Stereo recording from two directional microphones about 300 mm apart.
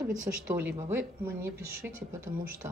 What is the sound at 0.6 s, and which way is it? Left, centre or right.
Speech, centre.